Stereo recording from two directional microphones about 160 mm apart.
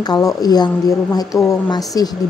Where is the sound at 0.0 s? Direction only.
25° left (ahead or behind).